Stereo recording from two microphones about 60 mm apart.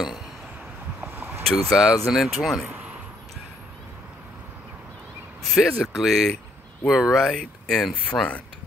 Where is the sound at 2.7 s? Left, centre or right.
Right.